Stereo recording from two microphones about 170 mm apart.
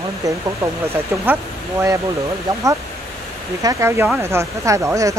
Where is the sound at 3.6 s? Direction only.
15° right (ahead or behind).